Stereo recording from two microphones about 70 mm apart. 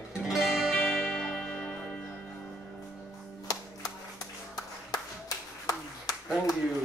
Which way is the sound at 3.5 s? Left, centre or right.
Left.